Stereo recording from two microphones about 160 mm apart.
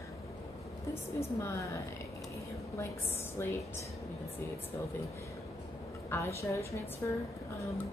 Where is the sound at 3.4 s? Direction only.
15° left (ahead or behind).